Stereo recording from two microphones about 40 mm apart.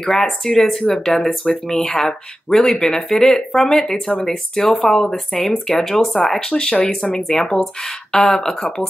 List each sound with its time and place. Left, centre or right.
0.0 s speech: centre
6.5 s speech: left